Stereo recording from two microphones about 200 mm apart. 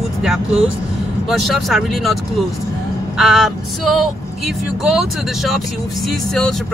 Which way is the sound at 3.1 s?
Centre (ahead or behind).